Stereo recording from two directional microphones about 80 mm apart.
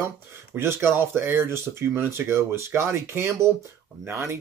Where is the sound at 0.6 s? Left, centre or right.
Right.